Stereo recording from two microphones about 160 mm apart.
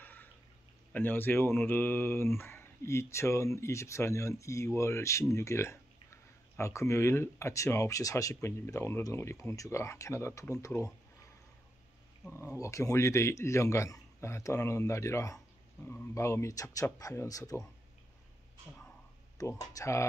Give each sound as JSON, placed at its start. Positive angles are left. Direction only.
{"t": 0.0, "sound": "a sound", "side_deg": 10}
{"t": 0.9, "sound": "speech", "side_deg": 10}
{"t": 12.3, "sound": "speech", "side_deg": 15}
{"t": 19.3, "sound": "speech", "side_deg": 20}